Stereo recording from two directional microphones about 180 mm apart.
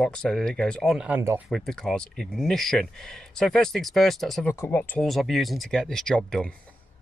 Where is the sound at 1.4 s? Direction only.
Centre (ahead or behind).